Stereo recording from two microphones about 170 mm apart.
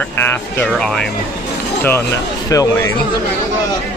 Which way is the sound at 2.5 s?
15° left (ahead or behind).